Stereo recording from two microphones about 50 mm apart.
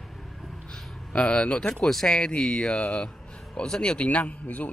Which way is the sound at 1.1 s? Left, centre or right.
Left.